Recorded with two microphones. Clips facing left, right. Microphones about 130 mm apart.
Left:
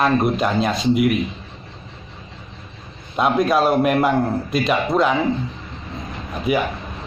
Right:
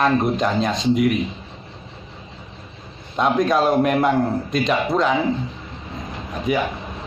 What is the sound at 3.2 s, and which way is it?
Speech, 10° left (ahead or behind).